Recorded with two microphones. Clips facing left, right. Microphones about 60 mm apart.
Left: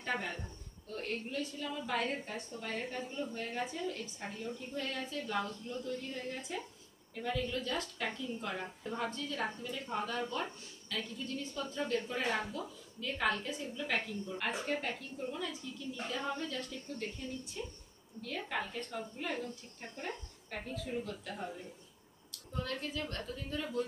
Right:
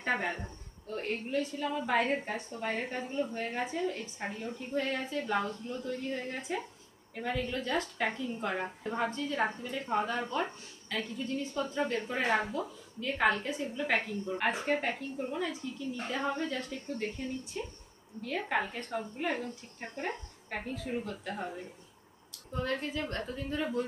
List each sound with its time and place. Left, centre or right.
0.0 s a woman's voice: right